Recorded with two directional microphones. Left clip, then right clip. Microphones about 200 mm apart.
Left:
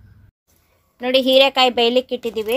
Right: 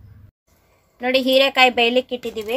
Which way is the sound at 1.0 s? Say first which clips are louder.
Left 2 dB; 25° left (ahead or behind).